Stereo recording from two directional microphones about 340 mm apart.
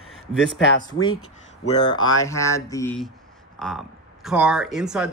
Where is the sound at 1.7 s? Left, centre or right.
Centre.